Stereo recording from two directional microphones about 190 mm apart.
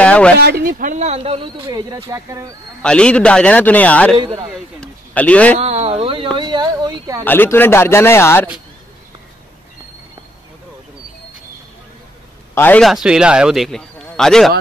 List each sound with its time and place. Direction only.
0.0 s a sound: 5° left (ahead or behind)
0.4 s speech: 55° right (ahead or behind); by 2.5 s 15° right (ahead or behind)
2.8 s a man's voice: 5° left (ahead or behind)
4.7 s a sound: 5° left (ahead or behind)
5.6 s speech: 35° right (ahead or behind)
7.2 s speech: 10° left (ahead or behind)
12.5 s a man's voice: 10° left (ahead or behind)